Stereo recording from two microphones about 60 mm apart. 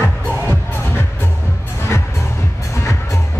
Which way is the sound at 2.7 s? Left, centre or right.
Left.